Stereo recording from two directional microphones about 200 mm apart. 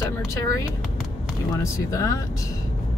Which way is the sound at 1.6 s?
15° left (ahead or behind).